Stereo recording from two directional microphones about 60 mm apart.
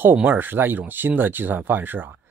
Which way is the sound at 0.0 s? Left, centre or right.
Right.